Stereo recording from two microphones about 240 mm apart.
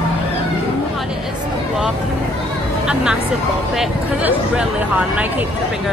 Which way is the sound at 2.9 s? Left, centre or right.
Centre.